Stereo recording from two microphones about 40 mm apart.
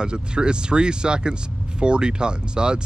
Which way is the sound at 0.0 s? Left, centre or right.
Right.